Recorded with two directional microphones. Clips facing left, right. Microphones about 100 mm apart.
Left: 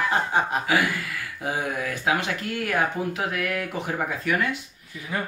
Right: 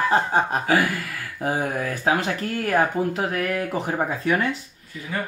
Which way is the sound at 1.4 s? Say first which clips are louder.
Right 4 dB; 40° right (ahead or behind).